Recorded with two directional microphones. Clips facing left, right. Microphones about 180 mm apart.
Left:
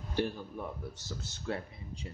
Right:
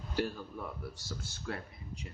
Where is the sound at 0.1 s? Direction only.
20° left (ahead or behind).